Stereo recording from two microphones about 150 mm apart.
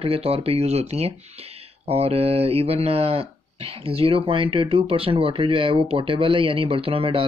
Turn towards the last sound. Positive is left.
turn(degrees=-40)  # may be behind; listen again after turning